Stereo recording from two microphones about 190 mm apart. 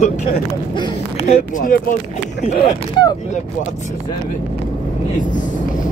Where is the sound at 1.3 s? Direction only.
45° left (ahead or behind).